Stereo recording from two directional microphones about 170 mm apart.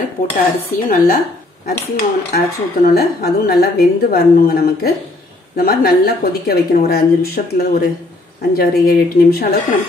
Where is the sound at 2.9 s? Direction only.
70° left (ahead or behind).